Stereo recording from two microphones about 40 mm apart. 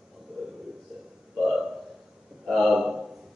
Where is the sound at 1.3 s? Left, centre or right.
Centre.